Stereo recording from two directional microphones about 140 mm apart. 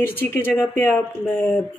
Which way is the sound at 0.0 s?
15° left (ahead or behind).